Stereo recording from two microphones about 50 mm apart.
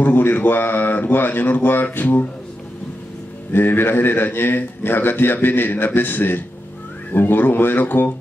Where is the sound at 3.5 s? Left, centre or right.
Left.